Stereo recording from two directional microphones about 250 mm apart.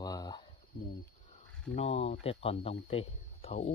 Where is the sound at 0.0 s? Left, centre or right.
Centre.